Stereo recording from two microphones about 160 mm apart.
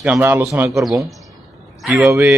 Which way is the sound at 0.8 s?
Centre (ahead or behind).